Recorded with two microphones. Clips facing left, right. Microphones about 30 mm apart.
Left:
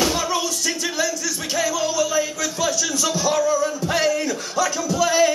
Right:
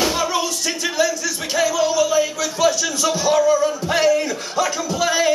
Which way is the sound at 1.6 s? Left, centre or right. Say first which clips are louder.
Right 4 dB; centre.